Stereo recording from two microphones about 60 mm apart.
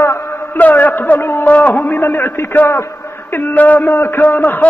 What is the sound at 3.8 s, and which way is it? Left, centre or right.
Speech, left.